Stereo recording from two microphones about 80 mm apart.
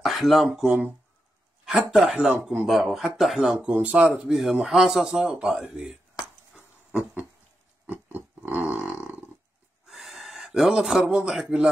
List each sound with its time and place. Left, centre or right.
0.0 s speech: centre
3.4 s speech: centre
4.3 s speech: centre
6.5 s dog: centre
7.8 s pig: right
9.8 s gasp: centre